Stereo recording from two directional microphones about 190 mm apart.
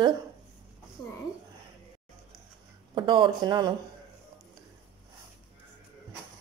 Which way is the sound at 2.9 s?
25° right (ahead or behind).